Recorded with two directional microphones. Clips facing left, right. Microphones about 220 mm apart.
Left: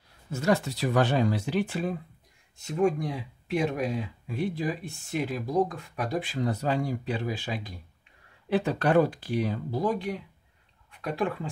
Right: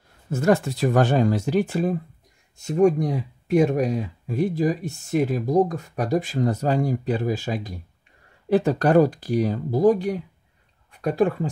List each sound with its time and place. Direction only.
0.3 s speech: 50° right (ahead or behind)